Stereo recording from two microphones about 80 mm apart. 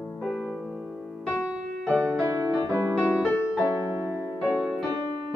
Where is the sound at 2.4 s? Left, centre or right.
Right.